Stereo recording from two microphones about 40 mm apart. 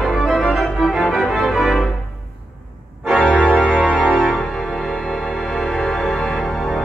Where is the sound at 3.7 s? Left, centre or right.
Right.